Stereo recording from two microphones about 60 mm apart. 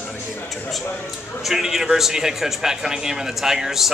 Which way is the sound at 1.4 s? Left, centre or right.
Centre.